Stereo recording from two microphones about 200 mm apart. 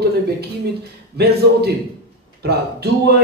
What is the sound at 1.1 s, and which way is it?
Speech, 55° right (ahead or behind).